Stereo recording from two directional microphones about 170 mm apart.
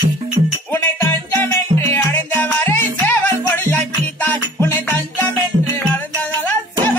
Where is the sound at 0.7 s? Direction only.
10° left (ahead or behind).